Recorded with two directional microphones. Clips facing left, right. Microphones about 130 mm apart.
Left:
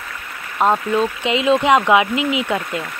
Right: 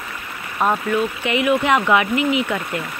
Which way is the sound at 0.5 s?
25° left (ahead or behind).